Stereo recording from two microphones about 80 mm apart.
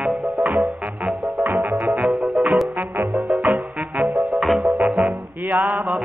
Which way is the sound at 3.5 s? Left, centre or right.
Centre.